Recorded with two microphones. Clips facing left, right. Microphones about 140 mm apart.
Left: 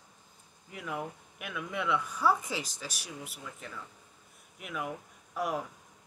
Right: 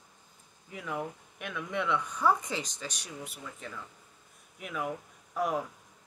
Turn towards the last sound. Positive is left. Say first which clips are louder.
# right 2 dB
turn(degrees=0)  # may be behind; listen again after turning